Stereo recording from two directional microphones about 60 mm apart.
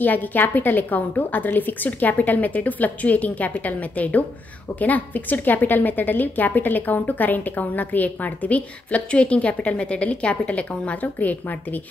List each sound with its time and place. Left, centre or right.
0.0 s a woman's voice: left